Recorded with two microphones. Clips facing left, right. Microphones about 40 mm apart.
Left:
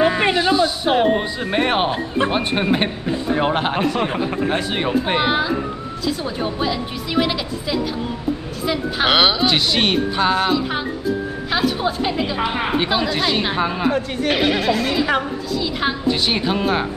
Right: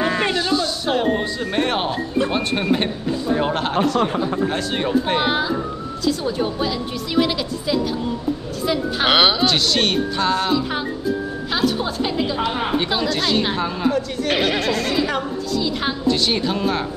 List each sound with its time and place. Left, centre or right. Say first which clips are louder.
0.0 s a woman's voice: left 4 dB; centre
9.5 s a woman's voice: left 1 dB; centre
14.3 s a woman's voice: left 1 dB; centre